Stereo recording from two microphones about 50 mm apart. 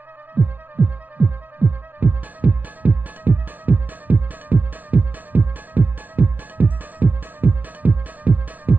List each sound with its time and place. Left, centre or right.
0.3 s music: right